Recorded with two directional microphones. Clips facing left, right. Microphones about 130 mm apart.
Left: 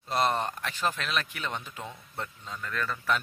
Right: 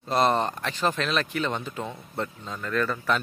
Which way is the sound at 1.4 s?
30° right (ahead or behind).